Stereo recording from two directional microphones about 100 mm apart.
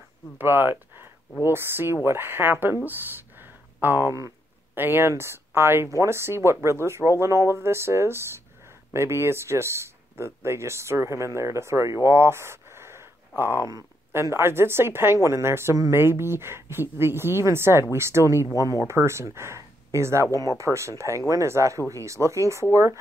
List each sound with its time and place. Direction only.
0.4 s speech: 20° right (ahead or behind)
13.7 s speech: 35° right (ahead or behind)
20.7 s speech: centre (ahead or behind)
21.3 s speech: 30° right (ahead or behind)